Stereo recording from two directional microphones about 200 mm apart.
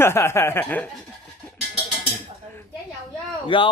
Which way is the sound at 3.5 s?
25° left (ahead or behind).